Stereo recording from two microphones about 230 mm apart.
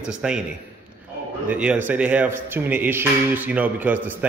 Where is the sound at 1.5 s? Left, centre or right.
Centre.